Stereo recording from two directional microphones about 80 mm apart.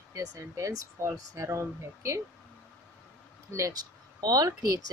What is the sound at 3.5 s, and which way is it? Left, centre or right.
Speech, right.